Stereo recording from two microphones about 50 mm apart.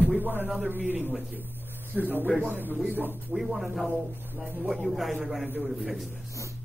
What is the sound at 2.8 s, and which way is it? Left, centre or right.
Speech, right.